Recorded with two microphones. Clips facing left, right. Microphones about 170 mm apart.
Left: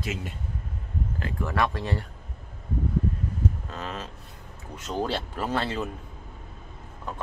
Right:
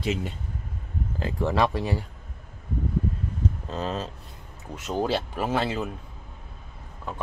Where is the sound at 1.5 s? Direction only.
15° right (ahead or behind).